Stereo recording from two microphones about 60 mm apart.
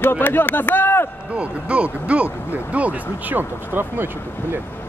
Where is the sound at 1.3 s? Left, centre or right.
Centre; by 4.1 s right.